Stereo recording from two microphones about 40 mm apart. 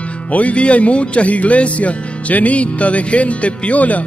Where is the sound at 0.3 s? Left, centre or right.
Left.